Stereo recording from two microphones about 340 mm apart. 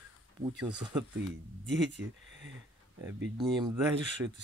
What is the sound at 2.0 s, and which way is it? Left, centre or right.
Speech, right.